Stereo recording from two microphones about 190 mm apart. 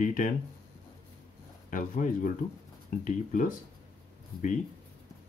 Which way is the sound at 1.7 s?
45° left (ahead or behind).